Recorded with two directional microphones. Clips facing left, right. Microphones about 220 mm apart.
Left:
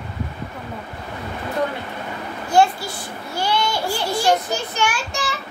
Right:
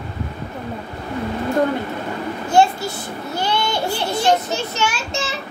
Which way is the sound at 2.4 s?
25° right (ahead or behind).